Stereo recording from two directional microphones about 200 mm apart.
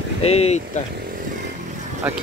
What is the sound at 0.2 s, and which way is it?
Speech, 30° left (ahead or behind).